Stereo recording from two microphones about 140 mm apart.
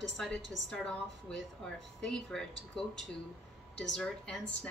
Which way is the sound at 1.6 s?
5° left (ahead or behind).